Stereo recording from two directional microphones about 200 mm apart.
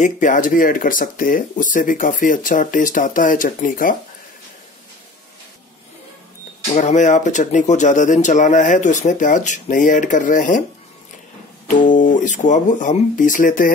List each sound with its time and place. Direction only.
0.0 s speech: 40° left (ahead or behind)
6.7 s speech: 35° left (ahead or behind)
11.6 s speech: 40° left (ahead or behind)